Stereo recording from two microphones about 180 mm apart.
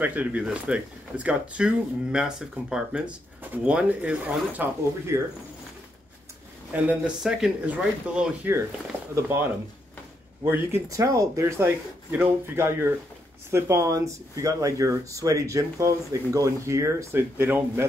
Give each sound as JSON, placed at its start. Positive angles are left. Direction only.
{"t": 0.0, "sound": "speech", "side_deg": -10}
{"t": 6.7, "sound": "speech", "side_deg": -5}